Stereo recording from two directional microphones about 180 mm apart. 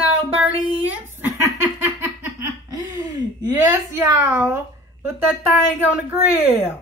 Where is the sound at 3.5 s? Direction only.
15° right (ahead or behind).